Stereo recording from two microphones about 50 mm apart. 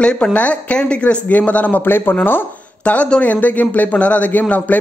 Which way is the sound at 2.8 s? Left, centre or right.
Left.